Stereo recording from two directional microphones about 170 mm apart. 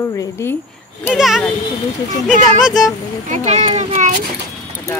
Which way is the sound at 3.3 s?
45° right (ahead or behind).